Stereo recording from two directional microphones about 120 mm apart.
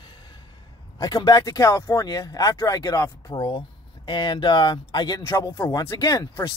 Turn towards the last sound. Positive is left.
turn(degrees=35)  # may be behind; listen again after turning